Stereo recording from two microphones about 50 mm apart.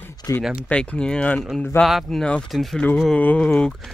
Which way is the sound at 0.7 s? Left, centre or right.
Centre.